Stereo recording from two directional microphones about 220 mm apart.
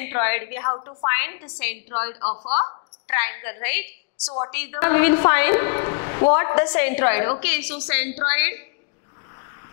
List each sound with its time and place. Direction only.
0.0 s a woman's voice: 15° left (ahead or behind)
2.2 s speech: 30° left (ahead or behind)
3.1 s a woman's voice: 15° left (ahead or behind)